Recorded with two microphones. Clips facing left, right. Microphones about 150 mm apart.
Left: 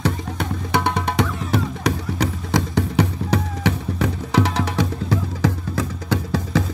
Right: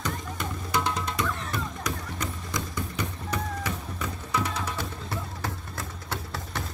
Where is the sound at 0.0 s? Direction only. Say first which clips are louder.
Left 8 dB; 70° left (ahead or behind).